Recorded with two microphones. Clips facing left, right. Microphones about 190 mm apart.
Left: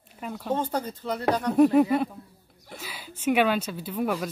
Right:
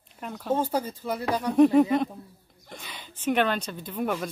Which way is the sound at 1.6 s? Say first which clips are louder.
Right 1 dB; 5° left (ahead or behind).